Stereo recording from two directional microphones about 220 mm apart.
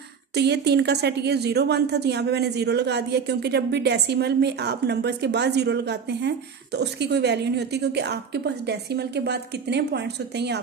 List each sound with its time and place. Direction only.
0.3 s speech: 50° right (ahead or behind)